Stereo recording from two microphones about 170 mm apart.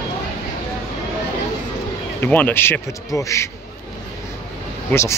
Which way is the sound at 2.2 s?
10° left (ahead or behind).